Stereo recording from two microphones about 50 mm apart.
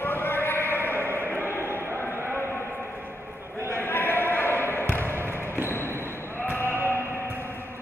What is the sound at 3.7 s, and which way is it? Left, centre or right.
Basketball bounce, left.